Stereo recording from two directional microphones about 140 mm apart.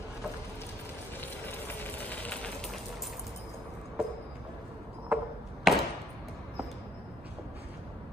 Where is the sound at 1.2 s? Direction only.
15° left (ahead or behind).